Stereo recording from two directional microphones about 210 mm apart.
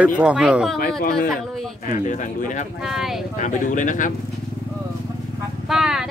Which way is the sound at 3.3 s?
35° left (ahead or behind).